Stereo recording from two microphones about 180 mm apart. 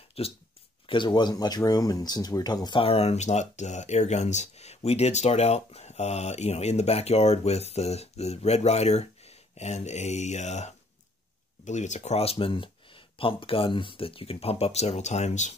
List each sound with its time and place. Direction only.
0.2 s speech: 35° left (ahead or behind)